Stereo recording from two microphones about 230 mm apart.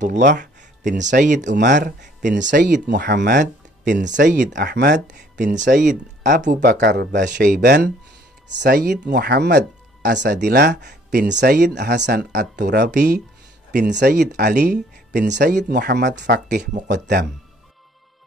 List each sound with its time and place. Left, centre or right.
0.0 s speech: right
1.6 s speech: right
4.3 s speech: right
5.0 s speech: right